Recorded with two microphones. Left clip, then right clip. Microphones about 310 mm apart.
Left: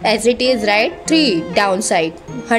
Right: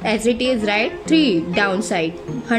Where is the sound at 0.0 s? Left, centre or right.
Centre.